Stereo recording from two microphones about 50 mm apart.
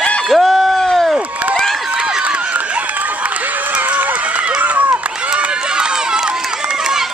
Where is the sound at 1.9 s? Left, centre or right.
Centre.